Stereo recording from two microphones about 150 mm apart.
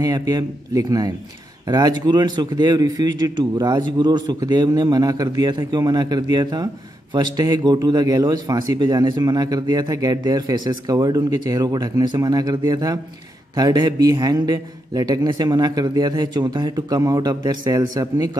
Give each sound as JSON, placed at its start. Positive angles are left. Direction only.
{"t": 0.0, "sound": "a man's voice", "side_deg": -25}